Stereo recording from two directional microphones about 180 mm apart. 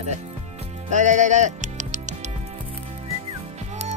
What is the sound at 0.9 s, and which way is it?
Music, 40° right (ahead or behind).